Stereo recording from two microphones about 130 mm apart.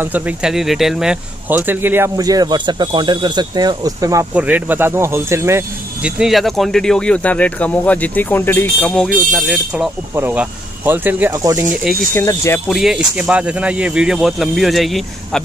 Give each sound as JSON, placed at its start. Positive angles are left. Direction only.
{"t": 0.0, "sound": "speech", "side_deg": -10}
{"t": 1.5, "sound": "speech", "side_deg": -15}
{"t": 2.1, "sound": "speech", "side_deg": -30}
{"t": 4.3, "sound": "speech", "side_deg": -10}
{"t": 6.0, "sound": "speech", "side_deg": -5}
{"t": 10.1, "sound": "speech", "side_deg": -15}
{"t": 11.7, "sound": "speech", "side_deg": 0}
{"t": 12.1, "sound": "speech", "side_deg": 20}
{"t": 12.6, "sound": "speech", "side_deg": 0}